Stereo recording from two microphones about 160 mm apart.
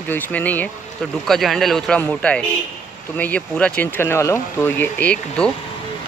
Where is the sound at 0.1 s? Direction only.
10° left (ahead or behind).